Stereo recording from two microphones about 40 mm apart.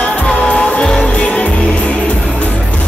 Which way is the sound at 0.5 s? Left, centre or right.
Left.